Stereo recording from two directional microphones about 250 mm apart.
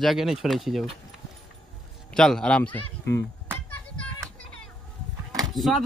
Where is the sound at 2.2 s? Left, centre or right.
Centre.